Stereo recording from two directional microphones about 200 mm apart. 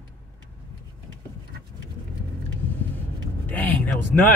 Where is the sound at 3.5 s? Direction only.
10° left (ahead or behind).